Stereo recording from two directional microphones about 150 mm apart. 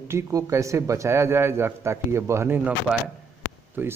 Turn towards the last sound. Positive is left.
turn(degrees=-15)  # may be behind; listen again after turning